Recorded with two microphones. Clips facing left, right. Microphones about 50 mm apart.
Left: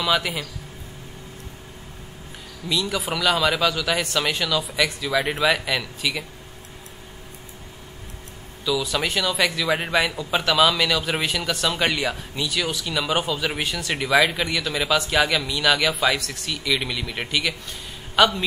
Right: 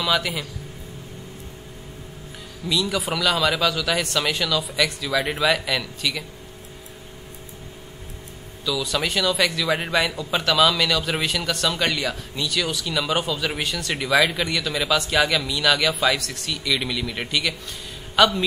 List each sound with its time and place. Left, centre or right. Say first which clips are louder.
0.0 s a man's voice: even; centre
2.7 s a man's voice: right 1 dB; centre
8.6 s a man's voice: left 1 dB; centre